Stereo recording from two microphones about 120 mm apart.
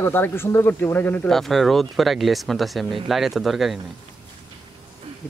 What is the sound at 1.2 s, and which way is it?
Speech, centre (ahead or behind).